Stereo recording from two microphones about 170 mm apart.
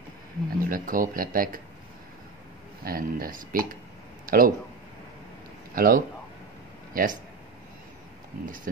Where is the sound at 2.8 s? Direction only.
60° right (ahead or behind).